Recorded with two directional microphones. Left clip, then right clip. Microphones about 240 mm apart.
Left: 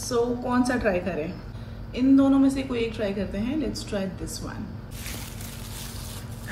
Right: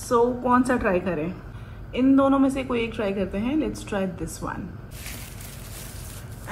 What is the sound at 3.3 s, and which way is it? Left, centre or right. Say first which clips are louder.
Speech: right 3 dB; centre.